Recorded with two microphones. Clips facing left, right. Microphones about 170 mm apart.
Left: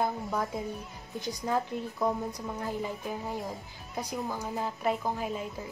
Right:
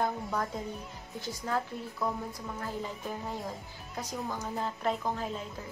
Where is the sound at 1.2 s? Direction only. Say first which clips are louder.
Left 3 dB; 15° left (ahead or behind).